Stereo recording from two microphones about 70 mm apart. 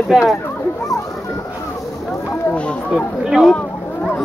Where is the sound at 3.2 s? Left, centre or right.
Centre.